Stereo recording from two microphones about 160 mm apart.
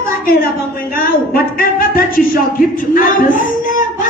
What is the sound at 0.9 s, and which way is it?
Speech, 65° left (ahead or behind).